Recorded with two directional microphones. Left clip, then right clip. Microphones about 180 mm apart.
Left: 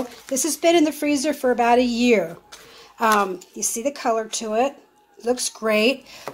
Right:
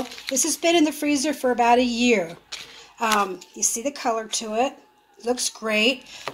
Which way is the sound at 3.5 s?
5° left (ahead or behind).